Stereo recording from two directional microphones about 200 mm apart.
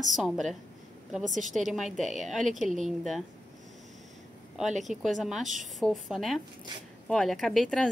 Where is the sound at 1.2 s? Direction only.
40° right (ahead or behind).